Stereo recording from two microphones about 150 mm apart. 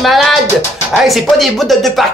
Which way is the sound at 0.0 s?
Centre (ahead or behind).